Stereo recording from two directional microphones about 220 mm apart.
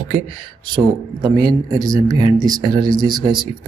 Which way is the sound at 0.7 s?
20° right (ahead or behind).